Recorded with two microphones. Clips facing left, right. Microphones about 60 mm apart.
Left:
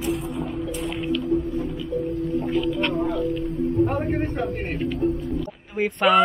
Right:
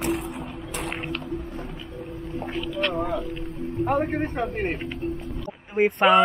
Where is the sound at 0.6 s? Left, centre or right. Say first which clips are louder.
Left 1 dB; right.